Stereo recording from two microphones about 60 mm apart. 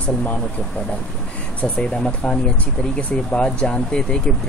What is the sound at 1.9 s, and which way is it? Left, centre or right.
Speech, centre.